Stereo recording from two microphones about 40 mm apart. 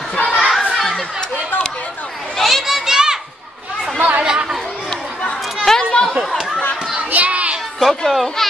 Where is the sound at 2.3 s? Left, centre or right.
Centre.